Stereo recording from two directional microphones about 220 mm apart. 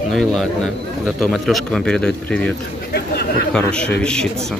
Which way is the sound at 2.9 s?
45° left (ahead or behind).